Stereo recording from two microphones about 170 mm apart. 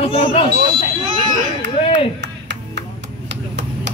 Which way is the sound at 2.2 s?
90° right.